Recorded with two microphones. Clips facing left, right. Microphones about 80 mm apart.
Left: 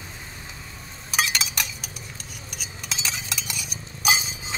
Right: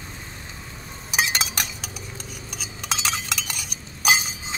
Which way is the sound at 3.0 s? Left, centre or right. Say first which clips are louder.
Right 3 dB; right.